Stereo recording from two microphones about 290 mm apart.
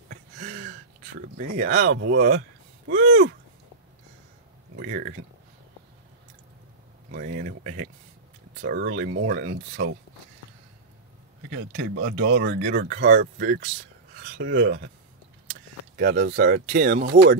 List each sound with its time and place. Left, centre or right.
0.1 s a sound: right
1.2 s speech: right
2.1 s speech: right
4.7 s speech: right
7.1 s speech: right
12.2 s speech: right
16.0 s speech: right